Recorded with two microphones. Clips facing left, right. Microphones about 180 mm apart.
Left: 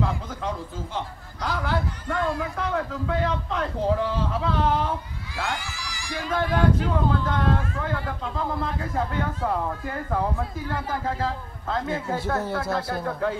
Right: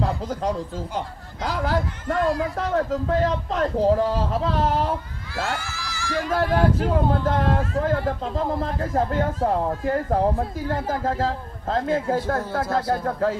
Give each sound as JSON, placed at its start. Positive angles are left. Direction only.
{"t": 0.0, "sound": "a man's voice", "side_deg": -35}
{"t": 5.3, "sound": "speech", "side_deg": 15}
{"t": 6.1, "sound": "speech", "side_deg": -45}